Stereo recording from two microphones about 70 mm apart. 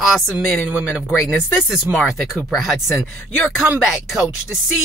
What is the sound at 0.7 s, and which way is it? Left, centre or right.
Speech, right.